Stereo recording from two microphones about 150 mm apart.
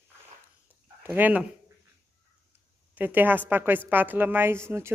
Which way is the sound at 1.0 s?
10° right (ahead or behind).